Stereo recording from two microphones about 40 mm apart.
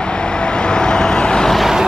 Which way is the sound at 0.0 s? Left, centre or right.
Left.